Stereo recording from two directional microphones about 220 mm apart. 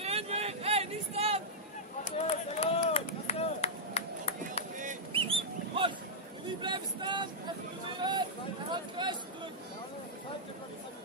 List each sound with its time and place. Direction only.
0.0 s vehicle: 25° right (ahead or behind)
2.0 s chop: 30° left (ahead or behind)
4.7 s a sound: 30° right (ahead or behind)